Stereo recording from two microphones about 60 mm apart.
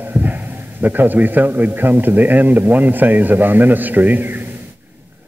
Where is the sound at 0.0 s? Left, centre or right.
Right.